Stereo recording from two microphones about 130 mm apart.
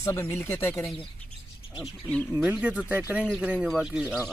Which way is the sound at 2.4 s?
10° right (ahead or behind).